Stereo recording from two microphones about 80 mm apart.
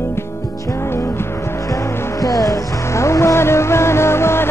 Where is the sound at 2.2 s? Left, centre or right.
Left.